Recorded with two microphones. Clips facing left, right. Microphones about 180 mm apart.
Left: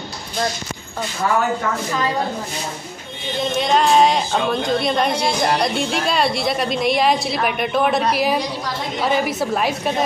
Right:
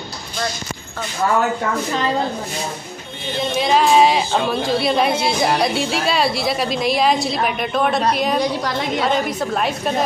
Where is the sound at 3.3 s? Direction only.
Centre (ahead or behind).